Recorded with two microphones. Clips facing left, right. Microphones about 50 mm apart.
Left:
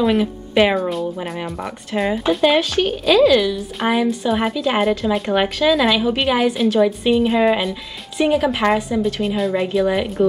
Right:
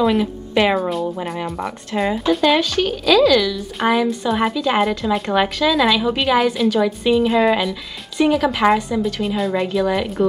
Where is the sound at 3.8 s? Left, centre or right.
Centre.